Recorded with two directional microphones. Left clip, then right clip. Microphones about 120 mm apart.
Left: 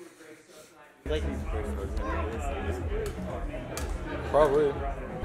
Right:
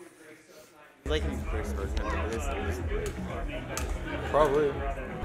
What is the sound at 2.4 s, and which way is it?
Speech, 20° right (ahead or behind).